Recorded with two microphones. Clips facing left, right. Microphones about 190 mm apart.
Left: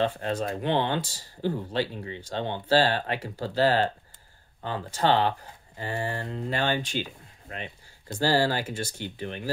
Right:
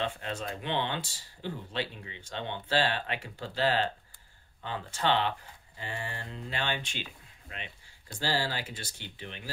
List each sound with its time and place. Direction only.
0.0 s speech: 40° left (ahead or behind)